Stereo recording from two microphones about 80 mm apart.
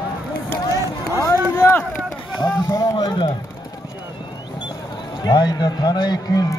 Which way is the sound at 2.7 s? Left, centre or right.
Left.